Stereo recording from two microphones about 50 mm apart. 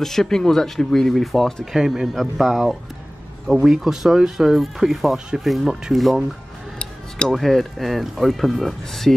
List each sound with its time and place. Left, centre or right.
0.0 s speech: centre
6.8 s music: centre
7.3 s speech: centre